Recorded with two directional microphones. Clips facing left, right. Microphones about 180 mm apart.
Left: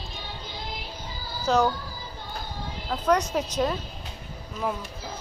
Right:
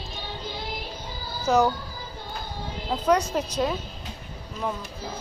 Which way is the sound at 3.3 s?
Centre (ahead or behind).